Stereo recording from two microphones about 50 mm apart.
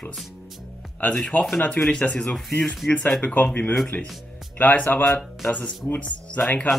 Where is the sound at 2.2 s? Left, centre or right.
Centre.